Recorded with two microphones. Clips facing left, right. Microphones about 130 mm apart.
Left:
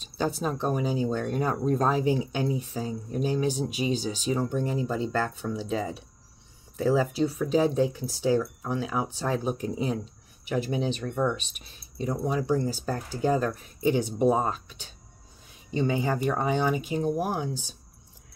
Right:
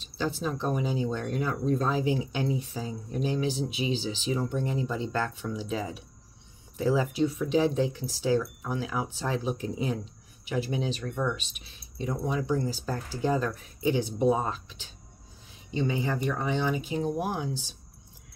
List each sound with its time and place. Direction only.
0.2 s speech: 50° left (ahead or behind)
6.8 s speech: 40° left (ahead or behind)